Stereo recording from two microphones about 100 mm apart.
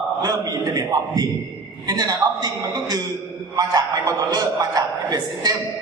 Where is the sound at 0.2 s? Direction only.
40° right (ahead or behind).